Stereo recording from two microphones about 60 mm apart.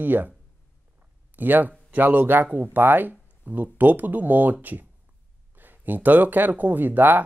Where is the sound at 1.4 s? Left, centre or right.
Right.